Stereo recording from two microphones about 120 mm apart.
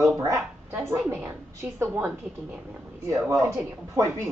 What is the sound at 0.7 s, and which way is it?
Speech, 15° right (ahead or behind).